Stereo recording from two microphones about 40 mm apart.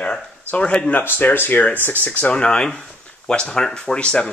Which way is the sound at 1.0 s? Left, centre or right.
Left.